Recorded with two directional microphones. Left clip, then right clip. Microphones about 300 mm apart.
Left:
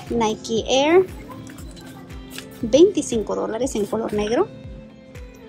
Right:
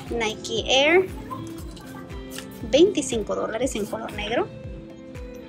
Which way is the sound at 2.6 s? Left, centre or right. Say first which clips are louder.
Left 3 dB; centre.